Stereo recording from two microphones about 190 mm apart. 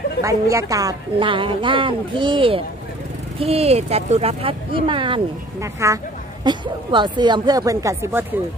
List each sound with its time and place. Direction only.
0.2 s a woman's voice: 15° right (ahead or behind)
5.6 s a woman's voice: 15° right (ahead or behind)